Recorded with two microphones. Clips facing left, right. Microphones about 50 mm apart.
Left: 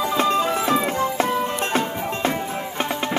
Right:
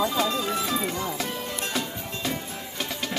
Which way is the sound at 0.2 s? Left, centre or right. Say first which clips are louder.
Left 6 dB; left.